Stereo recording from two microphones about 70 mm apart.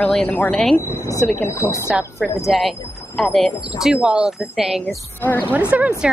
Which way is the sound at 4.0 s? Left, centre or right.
Centre.